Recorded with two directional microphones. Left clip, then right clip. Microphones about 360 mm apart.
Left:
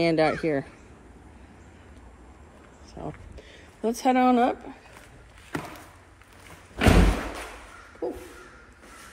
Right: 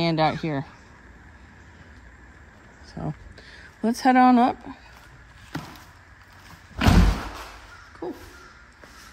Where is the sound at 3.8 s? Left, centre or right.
Centre.